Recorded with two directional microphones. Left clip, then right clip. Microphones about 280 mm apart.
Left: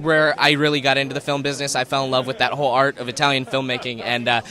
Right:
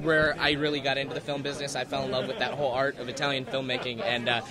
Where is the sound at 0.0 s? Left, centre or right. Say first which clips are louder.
Left 8 dB; left.